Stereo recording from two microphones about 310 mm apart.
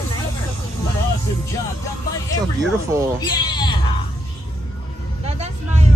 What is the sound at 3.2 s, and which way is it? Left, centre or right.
Bleat, centre.